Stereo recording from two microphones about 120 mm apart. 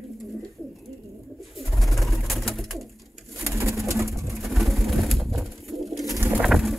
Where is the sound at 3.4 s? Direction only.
25° right (ahead or behind).